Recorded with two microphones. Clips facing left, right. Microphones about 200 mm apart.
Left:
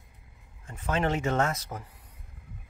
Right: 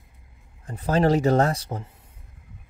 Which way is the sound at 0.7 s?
35° right (ahead or behind).